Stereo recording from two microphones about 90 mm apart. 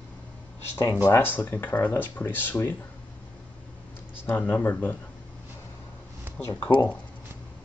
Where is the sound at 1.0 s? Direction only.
25° left (ahead or behind).